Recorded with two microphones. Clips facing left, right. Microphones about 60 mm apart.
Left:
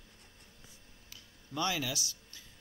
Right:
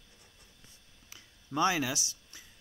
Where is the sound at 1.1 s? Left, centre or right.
Right.